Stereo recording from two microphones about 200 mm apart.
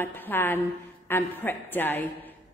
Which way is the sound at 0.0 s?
10° left (ahead or behind).